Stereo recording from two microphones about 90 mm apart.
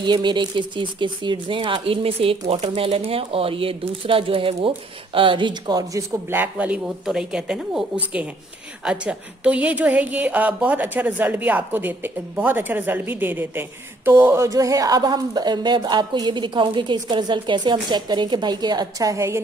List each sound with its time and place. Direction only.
0.0 s speech: 55° right (ahead or behind)
5.9 s speech: 25° right (ahead or behind)
7.1 s a woman's voice: 10° right (ahead or behind); by 19.4 s 35° right (ahead or behind)